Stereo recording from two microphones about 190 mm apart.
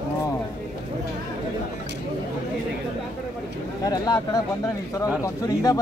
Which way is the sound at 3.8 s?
20° left (ahead or behind).